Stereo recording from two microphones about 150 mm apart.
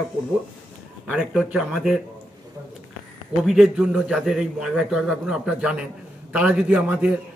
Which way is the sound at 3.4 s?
Centre (ahead or behind).